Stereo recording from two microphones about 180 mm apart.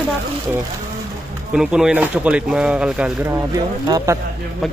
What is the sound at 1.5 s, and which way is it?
Speech, 5° right (ahead or behind).